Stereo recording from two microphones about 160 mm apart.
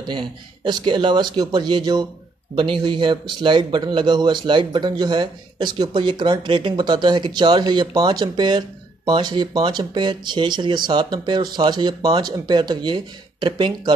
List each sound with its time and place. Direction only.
0.0 s speech: 30° right (ahead or behind)